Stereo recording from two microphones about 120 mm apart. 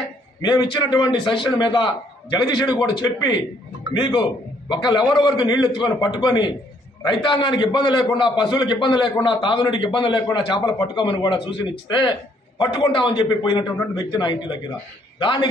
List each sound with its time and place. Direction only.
0.4 s a man's voice: 40° left (ahead or behind)